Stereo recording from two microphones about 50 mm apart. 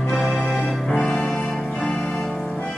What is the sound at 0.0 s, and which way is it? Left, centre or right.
Music, centre.